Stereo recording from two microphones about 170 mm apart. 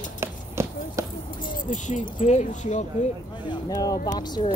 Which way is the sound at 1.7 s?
45° left (ahead or behind).